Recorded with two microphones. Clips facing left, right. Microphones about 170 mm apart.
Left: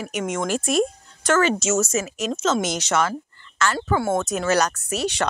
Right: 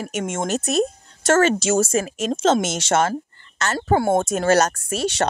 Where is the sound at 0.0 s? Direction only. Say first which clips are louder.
Even; 45° right (ahead or behind).